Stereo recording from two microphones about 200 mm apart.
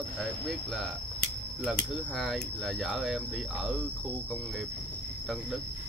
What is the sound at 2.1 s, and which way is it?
Speech, centre (ahead or behind).